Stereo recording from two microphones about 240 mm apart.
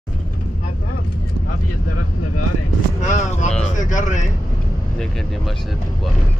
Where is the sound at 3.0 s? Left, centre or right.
Left.